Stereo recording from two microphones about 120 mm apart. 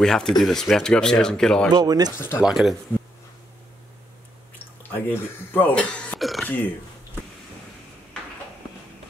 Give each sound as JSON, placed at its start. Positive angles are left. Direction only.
{"t": 0.0, "sound": "speech", "side_deg": 5}
{"t": 1.7, "sound": "speech", "side_deg": -35}
{"t": 2.1, "sound": "speech", "side_deg": 25}
{"t": 2.4, "sound": "speech", "side_deg": 0}
{"t": 4.9, "sound": "speech", "side_deg": 15}
{"t": 6.4, "sound": "speech", "side_deg": 15}